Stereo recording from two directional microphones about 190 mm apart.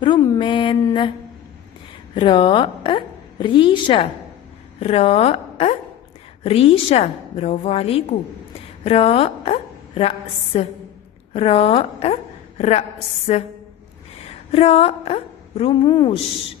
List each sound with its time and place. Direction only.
0.0 s a woman's voice: 25° left (ahead or behind)
2.1 s a woman's voice: 25° left (ahead or behind)